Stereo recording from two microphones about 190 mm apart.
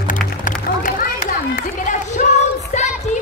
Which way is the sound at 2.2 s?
40° left (ahead or behind).